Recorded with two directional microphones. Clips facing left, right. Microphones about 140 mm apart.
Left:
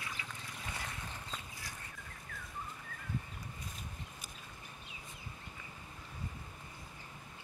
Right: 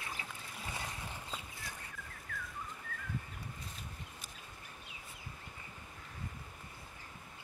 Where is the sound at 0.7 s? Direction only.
10° right (ahead or behind).